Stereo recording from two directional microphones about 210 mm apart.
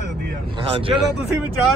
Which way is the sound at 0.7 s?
25° right (ahead or behind).